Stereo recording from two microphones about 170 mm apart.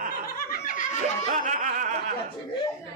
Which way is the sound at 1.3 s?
50° right (ahead or behind).